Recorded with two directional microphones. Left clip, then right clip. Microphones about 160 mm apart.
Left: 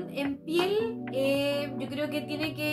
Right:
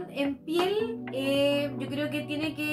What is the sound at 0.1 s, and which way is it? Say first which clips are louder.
Music: right 1 dB; centre (ahead or behind).